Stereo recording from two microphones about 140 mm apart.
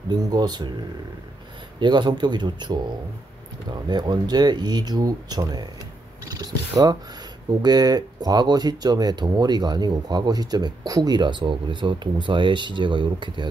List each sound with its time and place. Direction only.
0.1 s speech: 30° right (ahead or behind)
1.8 s speech: 30° right (ahead or behind)